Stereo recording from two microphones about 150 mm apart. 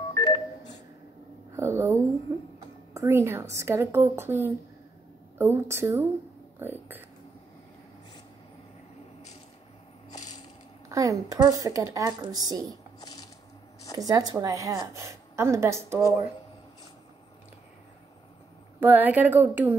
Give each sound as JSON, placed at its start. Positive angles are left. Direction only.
{"t": 0.1, "sound": "telephone dialing", "side_deg": 30}
{"t": 1.5, "sound": "a sound", "side_deg": -15}
{"t": 2.3, "sound": "a woman's voice", "side_deg": -25}
{"t": 6.6, "sound": "a sound", "side_deg": -15}
{"t": 10.9, "sound": "a woman's voice", "side_deg": -25}
{"t": 13.0, "sound": "coin", "side_deg": 25}
{"t": 13.9, "sound": "a woman's voice", "side_deg": -25}
{"t": 18.8, "sound": "a woman's voice", "side_deg": -10}